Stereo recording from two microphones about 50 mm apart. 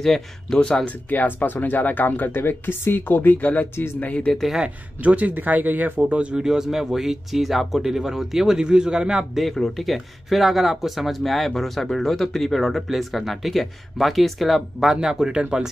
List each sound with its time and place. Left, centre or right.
0.0 s speech: centre
0.6 s speech: centre
0.8 s speech: left
5.0 s speech: right
6.3 s speech: centre
9.4 s speech: centre
15.0 s speech: centre